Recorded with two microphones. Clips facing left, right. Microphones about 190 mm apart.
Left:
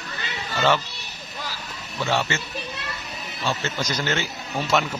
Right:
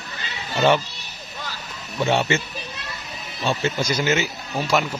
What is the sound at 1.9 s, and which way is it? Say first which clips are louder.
Speech: right 4 dB; 20° right (ahead or behind).